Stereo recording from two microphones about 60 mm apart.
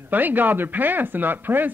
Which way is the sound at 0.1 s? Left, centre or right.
Right.